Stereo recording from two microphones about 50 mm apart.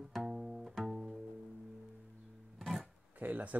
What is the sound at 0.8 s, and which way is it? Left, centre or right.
Pizzicato, centre.